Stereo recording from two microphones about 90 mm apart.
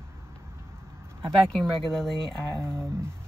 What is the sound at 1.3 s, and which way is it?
Speech, 5° left (ahead or behind).